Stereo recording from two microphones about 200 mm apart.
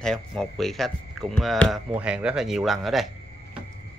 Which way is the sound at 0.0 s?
5° left (ahead or behind).